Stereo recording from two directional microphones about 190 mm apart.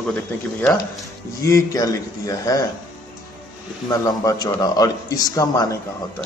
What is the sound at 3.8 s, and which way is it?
A man's voice, 20° left (ahead or behind).